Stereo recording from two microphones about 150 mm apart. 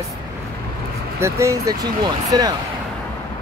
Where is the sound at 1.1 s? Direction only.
20° right (ahead or behind).